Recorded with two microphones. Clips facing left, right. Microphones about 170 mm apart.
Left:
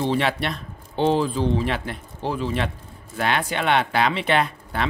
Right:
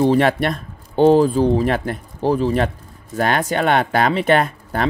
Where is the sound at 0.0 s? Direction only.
45° right (ahead or behind).